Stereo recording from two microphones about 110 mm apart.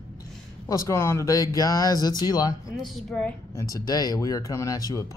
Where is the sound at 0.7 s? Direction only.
25° left (ahead or behind).